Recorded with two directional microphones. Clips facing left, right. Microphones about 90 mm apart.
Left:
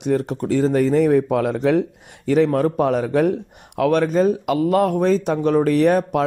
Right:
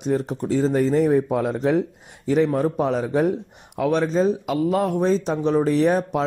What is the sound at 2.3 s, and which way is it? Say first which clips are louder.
Speech: left 3 dB; 70° left (ahead or behind).